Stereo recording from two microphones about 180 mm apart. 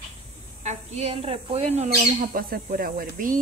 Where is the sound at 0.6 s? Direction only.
35° right (ahead or behind).